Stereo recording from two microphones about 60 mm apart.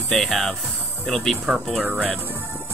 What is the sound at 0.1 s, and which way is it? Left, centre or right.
Speech, centre.